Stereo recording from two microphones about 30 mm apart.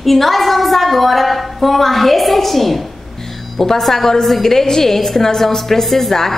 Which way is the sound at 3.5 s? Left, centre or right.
Centre.